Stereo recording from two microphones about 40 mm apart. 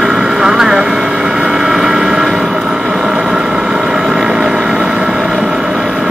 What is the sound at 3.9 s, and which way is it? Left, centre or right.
Vehicle, centre.